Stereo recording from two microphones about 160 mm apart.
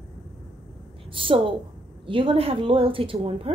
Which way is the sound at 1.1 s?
35° right (ahead or behind).